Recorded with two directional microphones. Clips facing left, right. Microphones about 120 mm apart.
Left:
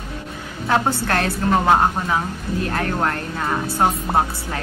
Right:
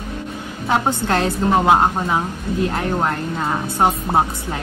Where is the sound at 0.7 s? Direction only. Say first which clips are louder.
Right 1 dB; 20° right (ahead or behind).